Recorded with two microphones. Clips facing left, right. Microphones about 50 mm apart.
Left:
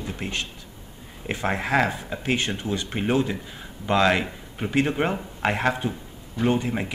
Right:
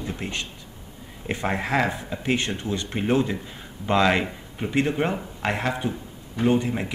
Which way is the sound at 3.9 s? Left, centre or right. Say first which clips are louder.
Even; centre.